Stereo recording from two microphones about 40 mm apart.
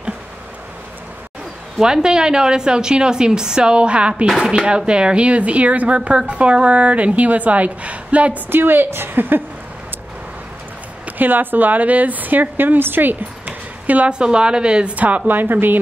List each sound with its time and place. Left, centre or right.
1.8 s a woman's voice: centre; by 8.4 s right
8.5 s a woman's voice: right
11.1 s speech: right
13.8 s speech: right
14.1 s a woman's voice: right
15.0 s speech: right
15.2 s speech: right